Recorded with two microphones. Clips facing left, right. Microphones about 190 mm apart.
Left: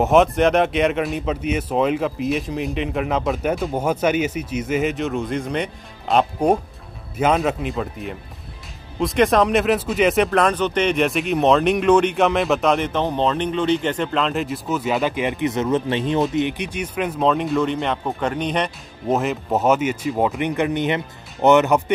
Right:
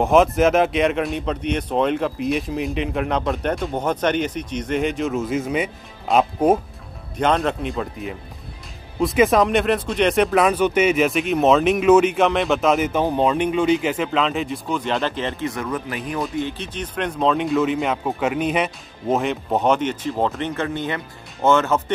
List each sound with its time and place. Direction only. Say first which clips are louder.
0.0 s speech: even; centre (ahead or behind); by 21.9 s 15° left (ahead or behind)